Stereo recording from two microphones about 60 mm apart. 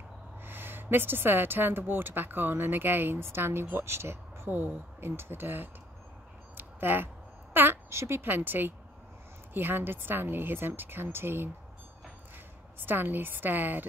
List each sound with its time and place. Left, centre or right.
0.4 s a woman's voice: right
6.5 s a sound: right
7.5 s speech: right
7.9 s a woman's voice: right
12.7 s a woman's voice: right